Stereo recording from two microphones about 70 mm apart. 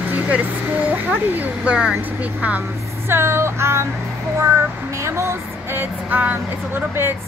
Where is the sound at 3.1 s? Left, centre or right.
Right.